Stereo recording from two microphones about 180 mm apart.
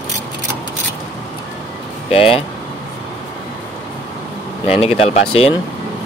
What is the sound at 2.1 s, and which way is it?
Speech, 30° left (ahead or behind).